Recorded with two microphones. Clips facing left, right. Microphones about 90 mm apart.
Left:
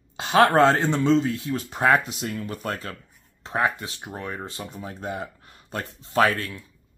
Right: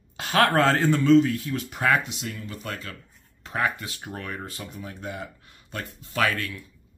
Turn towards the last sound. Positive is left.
turn(degrees=30)  # may be behind; listen again after turning